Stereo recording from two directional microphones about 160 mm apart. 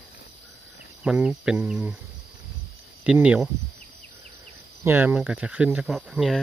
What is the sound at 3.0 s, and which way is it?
Speech, 10° right (ahead or behind).